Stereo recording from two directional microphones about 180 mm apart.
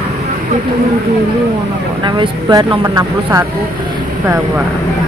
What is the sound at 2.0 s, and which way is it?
Speech, 25° right (ahead or behind).